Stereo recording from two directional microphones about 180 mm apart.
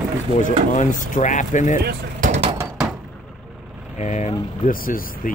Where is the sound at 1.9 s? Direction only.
45° right (ahead or behind).